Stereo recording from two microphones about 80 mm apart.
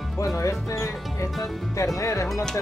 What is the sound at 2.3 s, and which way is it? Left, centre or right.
Speech, centre.